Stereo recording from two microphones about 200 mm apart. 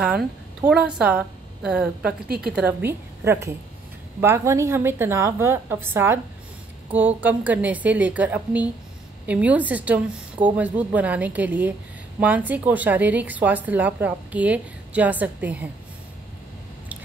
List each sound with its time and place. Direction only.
0.7 s a woman's voice: 5° right (ahead or behind)
2.2 s a woman's voice: 50° right (ahead or behind)
2.5 s a woman's voice: 10° right (ahead or behind)